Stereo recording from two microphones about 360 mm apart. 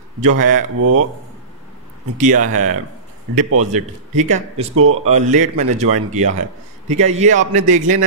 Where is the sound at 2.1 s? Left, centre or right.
Right.